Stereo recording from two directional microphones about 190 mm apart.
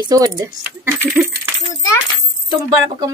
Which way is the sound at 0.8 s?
10° right (ahead or behind).